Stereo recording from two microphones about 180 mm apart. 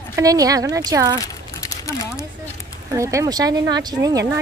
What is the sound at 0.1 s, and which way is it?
Speech, 20° right (ahead or behind).